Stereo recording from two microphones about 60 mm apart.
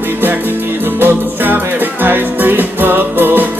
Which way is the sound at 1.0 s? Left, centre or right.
Right.